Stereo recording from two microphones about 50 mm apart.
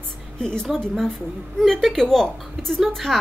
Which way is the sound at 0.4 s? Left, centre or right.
Centre.